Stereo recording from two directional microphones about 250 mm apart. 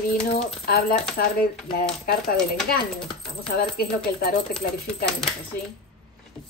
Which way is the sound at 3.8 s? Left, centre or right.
Left.